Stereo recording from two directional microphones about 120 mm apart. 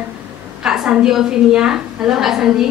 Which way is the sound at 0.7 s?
5° right (ahead or behind).